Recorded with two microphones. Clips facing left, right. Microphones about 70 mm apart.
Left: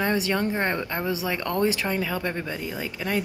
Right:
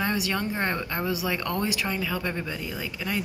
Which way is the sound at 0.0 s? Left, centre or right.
Left.